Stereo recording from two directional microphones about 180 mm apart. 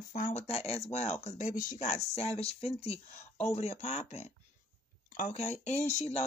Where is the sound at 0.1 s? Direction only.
40° left (ahead or behind).